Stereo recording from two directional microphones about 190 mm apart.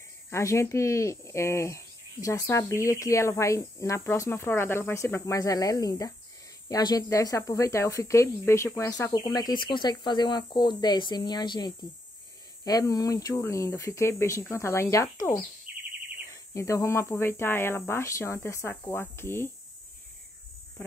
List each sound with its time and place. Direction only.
0.3 s speech: 15° left (ahead or behind)
16.5 s speech: 15° left (ahead or behind)